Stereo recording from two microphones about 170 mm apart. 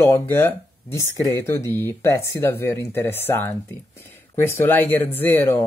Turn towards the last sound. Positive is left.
turn(degrees=10)  # may be behind; listen again after turning